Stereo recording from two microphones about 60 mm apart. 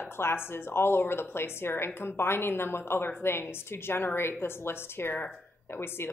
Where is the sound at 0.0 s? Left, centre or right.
Left.